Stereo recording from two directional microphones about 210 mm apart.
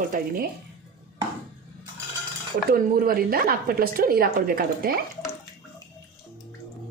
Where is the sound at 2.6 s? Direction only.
45° right (ahead or behind).